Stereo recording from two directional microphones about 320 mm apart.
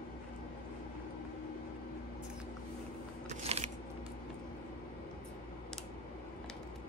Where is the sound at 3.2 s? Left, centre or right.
Centre.